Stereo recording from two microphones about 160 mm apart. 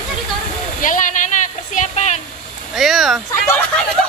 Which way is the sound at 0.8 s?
55° left (ahead or behind).